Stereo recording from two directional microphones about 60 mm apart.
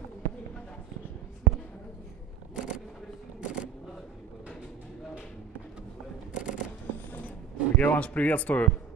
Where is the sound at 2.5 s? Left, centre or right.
Centre.